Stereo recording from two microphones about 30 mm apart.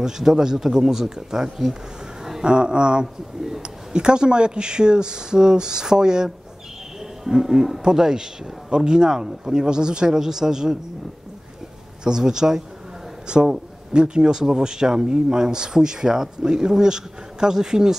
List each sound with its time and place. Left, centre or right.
0.0 s speech: centre
2.4 s a man's voice: right
10.1 s a man's voice: centre
12.0 s a man's voice: right